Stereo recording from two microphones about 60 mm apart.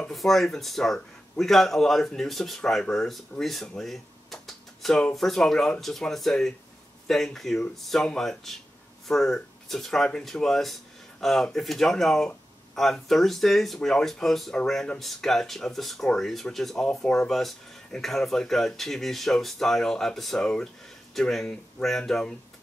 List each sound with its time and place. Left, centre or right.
0.1 s speech: centre
3.6 s a sound: centre
5.1 s speech: centre
21.1 s speech: centre